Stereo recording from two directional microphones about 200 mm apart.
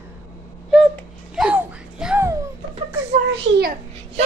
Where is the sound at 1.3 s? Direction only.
5° right (ahead or behind).